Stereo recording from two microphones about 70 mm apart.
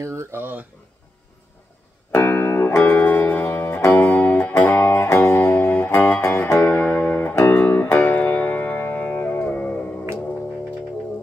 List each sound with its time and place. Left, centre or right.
0.0 s speech: right
2.1 s music: left
2.8 s music: left